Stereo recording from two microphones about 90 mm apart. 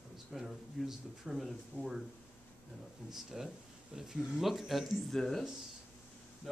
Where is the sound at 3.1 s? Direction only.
5° right (ahead or behind).